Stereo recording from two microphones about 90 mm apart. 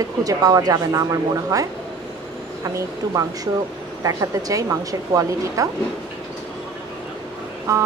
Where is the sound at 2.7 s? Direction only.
40° right (ahead or behind).